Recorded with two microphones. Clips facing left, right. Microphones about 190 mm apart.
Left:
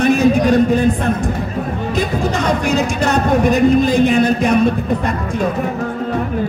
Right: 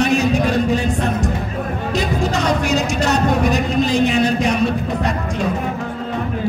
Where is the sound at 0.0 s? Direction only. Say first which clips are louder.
Left 4 dB; 55° left (ahead or behind).